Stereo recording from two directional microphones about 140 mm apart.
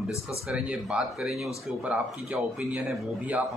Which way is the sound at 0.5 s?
5° right (ahead or behind).